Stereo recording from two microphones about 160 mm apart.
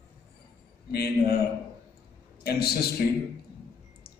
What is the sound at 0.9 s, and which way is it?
Speech, 75° left (ahead or behind).